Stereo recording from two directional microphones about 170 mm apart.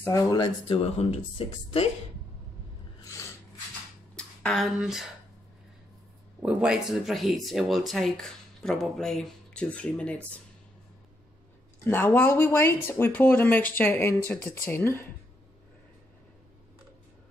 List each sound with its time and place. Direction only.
0.0 s speech: 20° left (ahead or behind)
0.8 s speech: 35° left (ahead or behind)
3.0 s filing: 20° left (ahead or behind)
4.1 s a sound: 5° left (ahead or behind)
6.4 s speech: 5° right (ahead or behind)
11.8 s speech: 10° left (ahead or behind)